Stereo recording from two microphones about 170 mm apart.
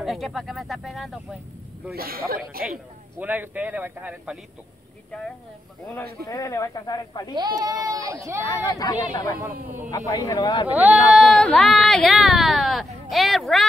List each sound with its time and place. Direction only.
0.0 s speech: centre (ahead or behind)
2.0 s speech: 60° right (ahead or behind)
3.2 s speech: 10° right (ahead or behind)
6.2 s speech: 20° left (ahead or behind)
7.3 s speech: 25° right (ahead or behind)
8.5 s speech: 20° left (ahead or behind)
10.7 s speech: 10° right (ahead or behind)